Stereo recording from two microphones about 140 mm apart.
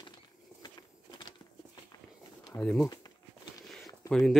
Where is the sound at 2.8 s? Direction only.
25° left (ahead or behind).